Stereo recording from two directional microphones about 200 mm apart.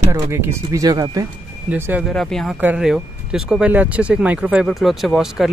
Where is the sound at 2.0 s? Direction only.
Centre (ahead or behind).